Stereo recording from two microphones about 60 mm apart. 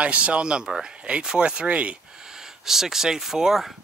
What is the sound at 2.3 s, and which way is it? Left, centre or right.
Speech, centre.